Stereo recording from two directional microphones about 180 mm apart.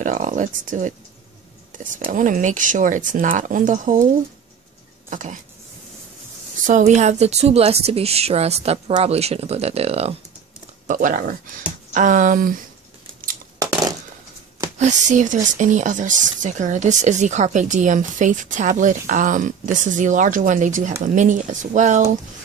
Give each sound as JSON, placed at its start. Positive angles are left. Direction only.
{"t": 0.0, "sound": "speech", "side_deg": -45}
{"t": 2.0, "sound": "speech", "side_deg": -45}
{"t": 5.1, "sound": "speech", "side_deg": -45}
{"t": 6.6, "sound": "a woman's voice", "side_deg": -40}
{"t": 10.9, "sound": "speech", "side_deg": -45}
{"t": 14.8, "sound": "speech", "side_deg": -40}